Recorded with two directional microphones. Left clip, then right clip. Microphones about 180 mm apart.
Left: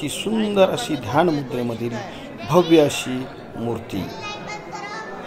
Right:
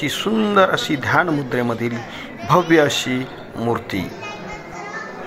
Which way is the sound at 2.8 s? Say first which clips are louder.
Right 1 dB; centre (ahead or behind).